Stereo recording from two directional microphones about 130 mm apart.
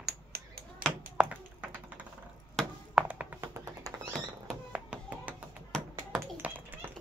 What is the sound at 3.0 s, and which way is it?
Cat, 10° right (ahead or behind).